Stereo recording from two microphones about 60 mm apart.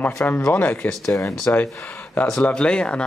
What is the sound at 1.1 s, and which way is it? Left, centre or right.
Speech, left.